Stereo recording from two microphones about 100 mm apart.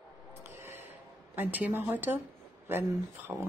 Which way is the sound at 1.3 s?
20° right (ahead or behind).